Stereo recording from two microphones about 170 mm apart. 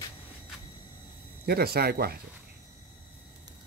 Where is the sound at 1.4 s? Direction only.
65° right (ahead or behind).